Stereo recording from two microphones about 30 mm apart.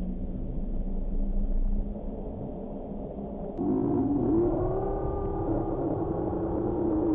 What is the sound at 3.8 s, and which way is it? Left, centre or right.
Vehicle, centre.